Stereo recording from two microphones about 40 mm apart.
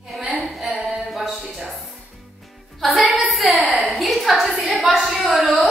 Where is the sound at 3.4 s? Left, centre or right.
Centre.